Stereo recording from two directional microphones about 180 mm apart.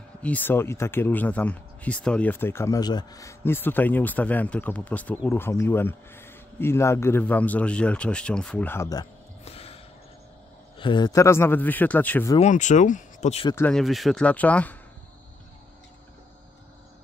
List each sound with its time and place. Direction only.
0.2 s speech: 10° left (ahead or behind)
9.4 s music: 35° left (ahead or behind)
10.8 s speech: 25° left (ahead or behind); by 12.3 s 10° left (ahead or behind)
12.4 s speech: 40° left (ahead or behind)
13.6 s speech: 5° left (ahead or behind)